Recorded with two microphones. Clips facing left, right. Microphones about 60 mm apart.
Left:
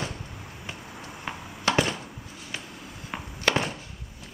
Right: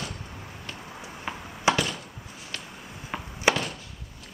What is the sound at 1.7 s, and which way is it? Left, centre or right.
Chop, centre.